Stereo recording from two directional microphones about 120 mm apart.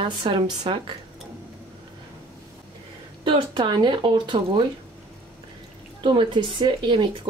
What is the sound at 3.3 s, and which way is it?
Speech, 40° right (ahead or behind).